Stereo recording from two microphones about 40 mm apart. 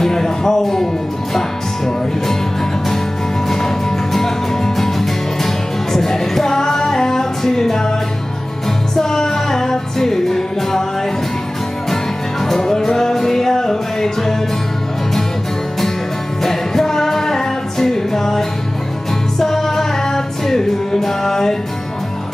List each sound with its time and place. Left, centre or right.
0.0 s music: centre
3.4 s music: centre
8.9 s music: centre
12.4 s music: centre
16.4 s music: centre